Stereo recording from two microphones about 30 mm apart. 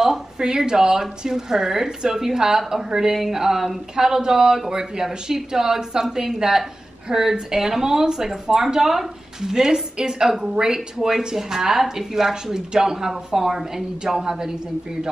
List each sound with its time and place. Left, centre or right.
0.7 s speech: right
9.5 s speech: centre